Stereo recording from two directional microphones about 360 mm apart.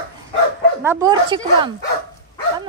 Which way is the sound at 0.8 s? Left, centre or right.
Centre.